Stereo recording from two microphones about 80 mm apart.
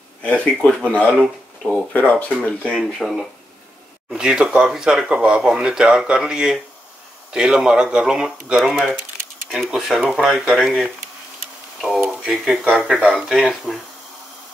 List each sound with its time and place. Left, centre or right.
0.2 s speech: centre
3.0 s speech: centre
12.1 s speech: centre